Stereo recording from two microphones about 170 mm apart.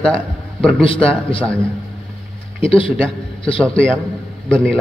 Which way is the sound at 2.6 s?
30° left (ahead or behind).